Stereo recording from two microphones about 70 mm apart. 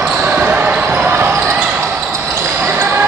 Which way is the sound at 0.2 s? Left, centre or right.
Right.